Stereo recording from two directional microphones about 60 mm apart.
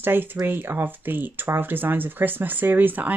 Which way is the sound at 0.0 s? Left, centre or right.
Right.